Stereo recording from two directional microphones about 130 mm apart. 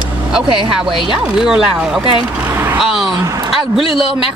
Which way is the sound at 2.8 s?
Centre (ahead or behind).